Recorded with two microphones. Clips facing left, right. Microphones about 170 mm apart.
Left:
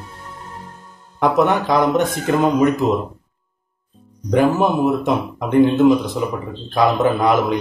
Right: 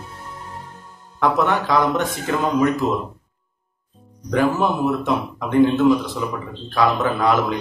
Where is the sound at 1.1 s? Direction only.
15° left (ahead or behind).